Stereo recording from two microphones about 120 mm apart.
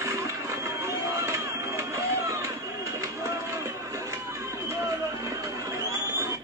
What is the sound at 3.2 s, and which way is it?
Run, 25° right (ahead or behind).